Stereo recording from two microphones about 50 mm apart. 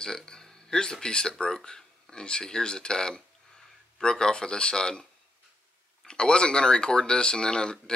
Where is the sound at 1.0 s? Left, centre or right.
Centre.